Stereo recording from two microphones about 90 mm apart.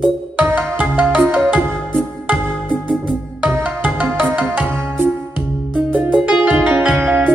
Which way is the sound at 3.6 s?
15° right (ahead or behind).